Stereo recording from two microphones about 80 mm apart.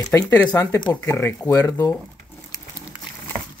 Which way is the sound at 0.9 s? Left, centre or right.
Left.